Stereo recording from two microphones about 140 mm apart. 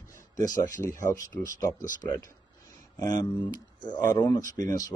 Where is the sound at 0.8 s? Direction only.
20° left (ahead or behind).